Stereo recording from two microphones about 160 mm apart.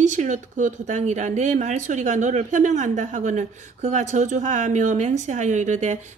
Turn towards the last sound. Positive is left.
turn(degrees=-50)  # may be behind; listen again after turning